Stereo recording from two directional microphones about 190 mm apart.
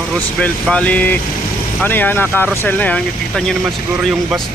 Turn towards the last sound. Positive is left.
turn(degrees=5)  # may be behind; listen again after turning